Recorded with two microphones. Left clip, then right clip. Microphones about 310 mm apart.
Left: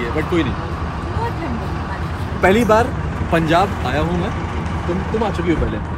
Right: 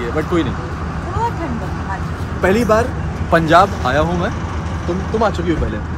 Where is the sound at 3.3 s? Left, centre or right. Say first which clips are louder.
Right 5 dB; centre.